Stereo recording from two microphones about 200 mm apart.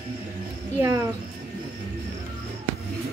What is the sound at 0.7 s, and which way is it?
Speech, 15° right (ahead or behind).